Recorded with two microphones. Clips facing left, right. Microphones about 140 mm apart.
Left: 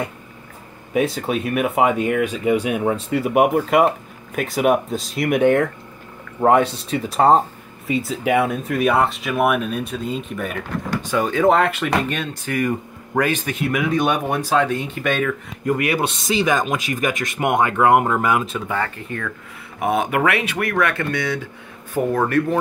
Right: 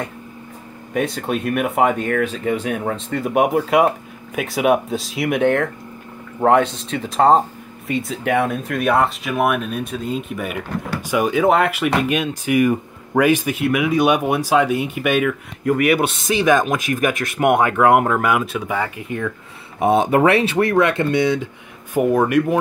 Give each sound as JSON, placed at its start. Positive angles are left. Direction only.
{"t": 0.9, "sound": "speech", "side_deg": 0}
{"t": 5.4, "sound": "speech", "side_deg": 10}
{"t": 16.3, "sound": "speech", "side_deg": 0}
{"t": 19.8, "sound": "speech", "side_deg": -30}